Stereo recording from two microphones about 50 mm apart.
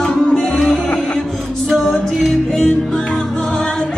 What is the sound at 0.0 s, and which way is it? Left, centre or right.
Music, centre.